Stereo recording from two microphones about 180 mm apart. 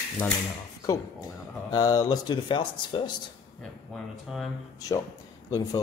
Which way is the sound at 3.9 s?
Centre (ahead or behind).